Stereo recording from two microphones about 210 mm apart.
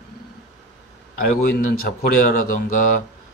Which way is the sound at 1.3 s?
35° left (ahead or behind).